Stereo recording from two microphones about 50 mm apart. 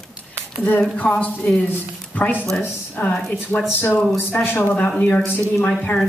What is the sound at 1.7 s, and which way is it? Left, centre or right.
Speech, left.